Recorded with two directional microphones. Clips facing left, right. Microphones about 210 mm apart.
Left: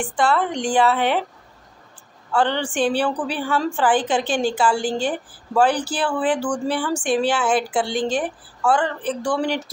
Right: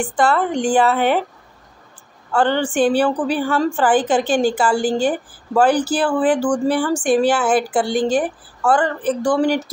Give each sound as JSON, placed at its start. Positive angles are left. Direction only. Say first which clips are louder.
{"t": 0.0, "sound": "a woman's voice", "louder": "right 3 dB", "side_deg": -5}
{"t": 2.3, "sound": "a woman's voice", "louder": "right 4 dB", "side_deg": -5}